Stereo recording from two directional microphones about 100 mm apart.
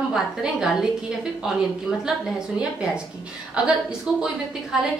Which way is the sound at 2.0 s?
5° right (ahead or behind).